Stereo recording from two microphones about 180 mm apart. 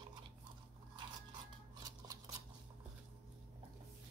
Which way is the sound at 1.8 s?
20° right (ahead or behind).